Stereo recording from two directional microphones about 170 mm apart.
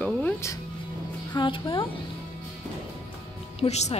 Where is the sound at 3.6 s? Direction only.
40° left (ahead or behind).